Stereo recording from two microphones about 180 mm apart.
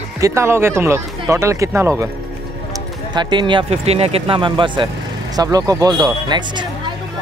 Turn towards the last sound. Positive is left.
turn(degrees=-25)  # may be behind; listen again after turning